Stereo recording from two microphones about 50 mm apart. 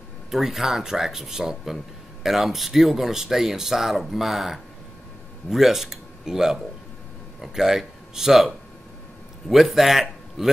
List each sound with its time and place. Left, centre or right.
0.3 s a man's voice: centre